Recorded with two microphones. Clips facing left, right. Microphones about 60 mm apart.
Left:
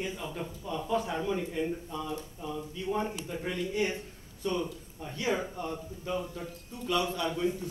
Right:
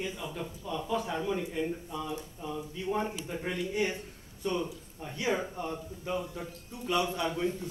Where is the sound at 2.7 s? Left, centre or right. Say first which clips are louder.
Even; centre.